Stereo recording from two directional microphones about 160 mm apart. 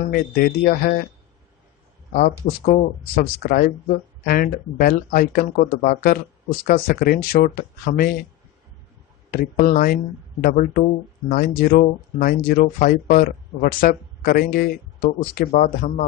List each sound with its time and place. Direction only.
0.1 s speech: 65° left (ahead or behind)
2.1 s speech: 55° left (ahead or behind)
3.2 s speech: 70° left (ahead or behind)
9.3 s speech: 65° left (ahead or behind)